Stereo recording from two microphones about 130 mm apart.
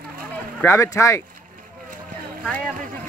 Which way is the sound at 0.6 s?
20° left (ahead or behind).